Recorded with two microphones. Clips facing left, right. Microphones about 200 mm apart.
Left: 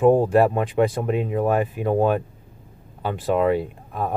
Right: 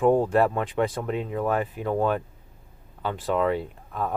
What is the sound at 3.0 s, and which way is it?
Speech, 10° left (ahead or behind).